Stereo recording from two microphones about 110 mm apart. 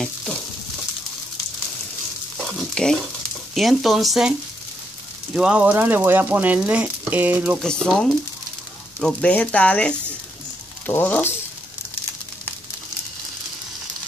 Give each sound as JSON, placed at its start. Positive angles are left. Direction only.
{"t": 2.3, "sound": "frying", "side_deg": 5}
{"t": 3.5, "sound": "speech", "side_deg": 0}
{"t": 7.6, "sound": "speech", "side_deg": 5}